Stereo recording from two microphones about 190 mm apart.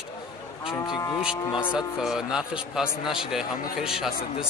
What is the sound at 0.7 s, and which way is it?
Cattle, 20° left (ahead or behind).